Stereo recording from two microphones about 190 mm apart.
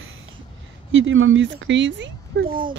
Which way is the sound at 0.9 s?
90° right.